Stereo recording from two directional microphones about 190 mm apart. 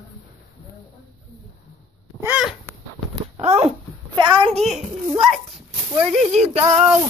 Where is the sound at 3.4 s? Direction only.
35° right (ahead or behind).